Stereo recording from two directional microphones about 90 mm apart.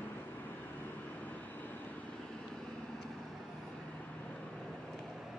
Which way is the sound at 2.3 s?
5° left (ahead or behind).